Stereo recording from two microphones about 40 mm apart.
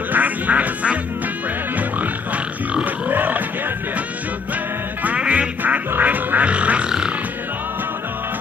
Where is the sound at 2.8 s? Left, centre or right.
Right.